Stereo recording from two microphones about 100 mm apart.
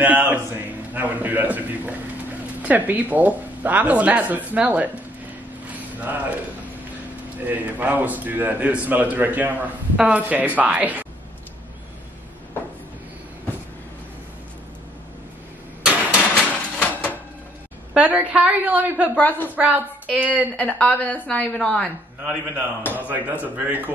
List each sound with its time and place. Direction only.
0.0 s a man's voice: 15° right (ahead or behind)
7.3 s a man's voice: 15° right (ahead or behind)
15.8 s vehicle: 15° right (ahead or behind)
16.3 s a sound: 10° left (ahead or behind)
17.9 s a woman's voice: 15° right (ahead or behind)
19.1 s a woman's voice: 20° left (ahead or behind)
19.5 s a man's voice: 15° right (ahead or behind)
20.5 s a woman's voice: 15° left (ahead or behind)
22.2 s a man's voice: 10° right (ahead or behind)